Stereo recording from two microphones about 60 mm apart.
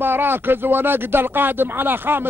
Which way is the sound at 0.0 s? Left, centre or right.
Right.